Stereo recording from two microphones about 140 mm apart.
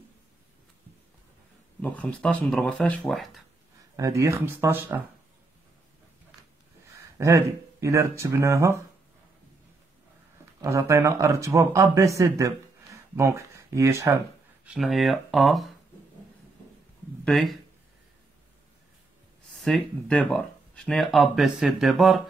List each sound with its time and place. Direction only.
1.8 s speech: 10° left (ahead or behind)
3.9 s speech: 20° right (ahead or behind)
7.2 s speech: 20° right (ahead or behind)
10.6 s speech: 20° right (ahead or behind)
14.6 s speech: 5° right (ahead or behind)
17.2 s speech: centre (ahead or behind)
19.5 s speech: 5° left (ahead or behind)